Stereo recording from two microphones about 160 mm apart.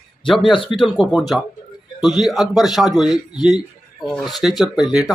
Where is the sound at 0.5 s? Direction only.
30° left (ahead or behind).